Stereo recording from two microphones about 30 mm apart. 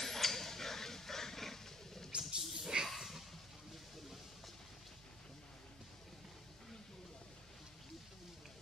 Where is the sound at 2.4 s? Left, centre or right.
Centre.